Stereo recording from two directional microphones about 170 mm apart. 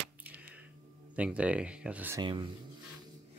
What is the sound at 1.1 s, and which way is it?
Speech, 5° right (ahead or behind).